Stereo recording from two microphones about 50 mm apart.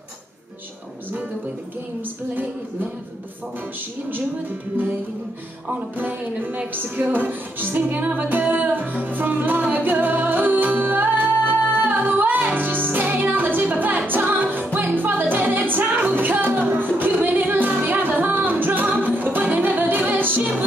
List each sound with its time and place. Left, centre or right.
5.7 s music: right